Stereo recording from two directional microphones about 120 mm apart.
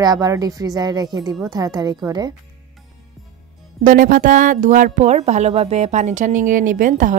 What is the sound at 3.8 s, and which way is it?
Speech, 90° right.